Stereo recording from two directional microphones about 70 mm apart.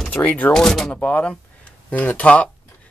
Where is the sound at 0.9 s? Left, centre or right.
Centre.